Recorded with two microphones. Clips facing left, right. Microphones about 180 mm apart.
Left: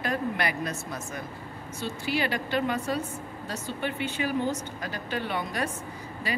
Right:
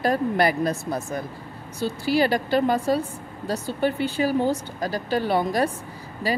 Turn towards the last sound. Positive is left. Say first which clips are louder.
# right 6 dB
turn(degrees=-35)  # may be behind; listen again after turning